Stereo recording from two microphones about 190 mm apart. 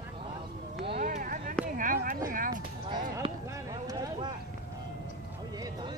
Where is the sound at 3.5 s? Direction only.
20° right (ahead or behind).